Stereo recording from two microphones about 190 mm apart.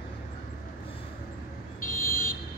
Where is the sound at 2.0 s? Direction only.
50° left (ahead or behind).